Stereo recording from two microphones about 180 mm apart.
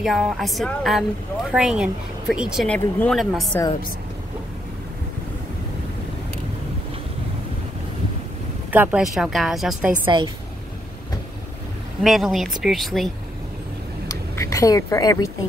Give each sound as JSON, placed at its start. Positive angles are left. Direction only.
{"t": 0.0, "sound": "speech", "side_deg": 0}
{"t": 8.6, "sound": "speech", "side_deg": -10}
{"t": 10.0, "sound": "a woman's voice", "side_deg": -25}
{"t": 12.0, "sound": "speech", "side_deg": 0}
{"t": 14.0, "sound": "a woman's voice", "side_deg": 15}